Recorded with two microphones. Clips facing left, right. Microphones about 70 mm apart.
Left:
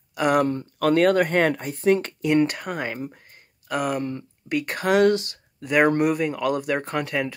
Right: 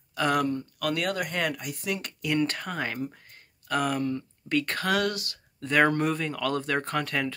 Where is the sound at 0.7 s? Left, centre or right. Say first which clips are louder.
Left 14 dB; left.